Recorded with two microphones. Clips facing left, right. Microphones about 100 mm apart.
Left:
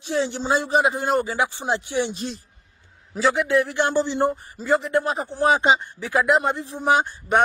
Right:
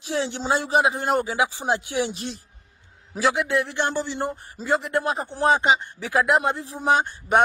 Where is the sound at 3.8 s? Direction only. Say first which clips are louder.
Left 5 dB; 20° left (ahead or behind).